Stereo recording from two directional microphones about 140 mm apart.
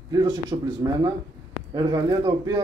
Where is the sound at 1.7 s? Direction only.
30° right (ahead or behind).